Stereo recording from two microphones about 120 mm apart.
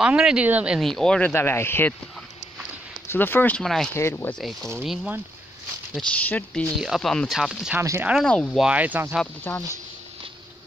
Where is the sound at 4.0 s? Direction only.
20° left (ahead or behind).